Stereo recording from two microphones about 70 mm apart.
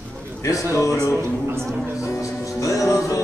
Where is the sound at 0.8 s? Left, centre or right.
Left.